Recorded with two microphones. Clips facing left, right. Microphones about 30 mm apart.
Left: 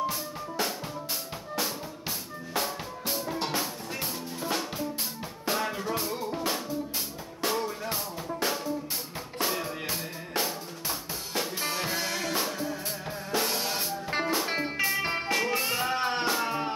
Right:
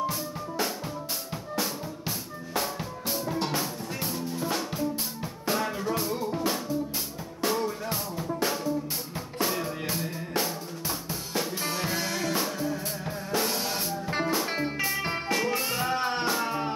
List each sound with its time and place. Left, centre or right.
0.0 s drum: left
1.5 s music: left
9.4 s drum: left